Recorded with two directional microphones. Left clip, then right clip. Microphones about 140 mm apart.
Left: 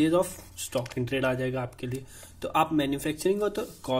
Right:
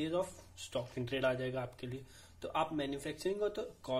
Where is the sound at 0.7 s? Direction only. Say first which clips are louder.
Left 9 dB; 25° left (ahead or behind).